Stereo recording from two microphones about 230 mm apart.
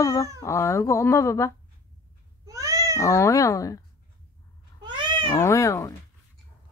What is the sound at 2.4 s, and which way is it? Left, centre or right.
Cat, centre.